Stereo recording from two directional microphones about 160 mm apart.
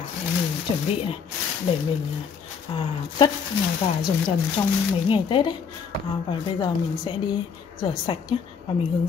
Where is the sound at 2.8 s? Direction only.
30° left (ahead or behind).